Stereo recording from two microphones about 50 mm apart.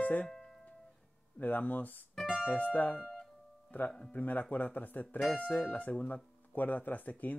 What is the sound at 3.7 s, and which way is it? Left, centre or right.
Speech, left.